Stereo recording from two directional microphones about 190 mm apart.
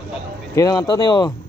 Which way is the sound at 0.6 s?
20° left (ahead or behind).